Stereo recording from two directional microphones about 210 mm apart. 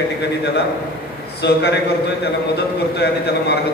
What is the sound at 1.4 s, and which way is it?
A man's voice, 50° left (ahead or behind).